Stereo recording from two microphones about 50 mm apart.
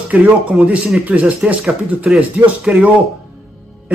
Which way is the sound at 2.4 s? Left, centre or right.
Right.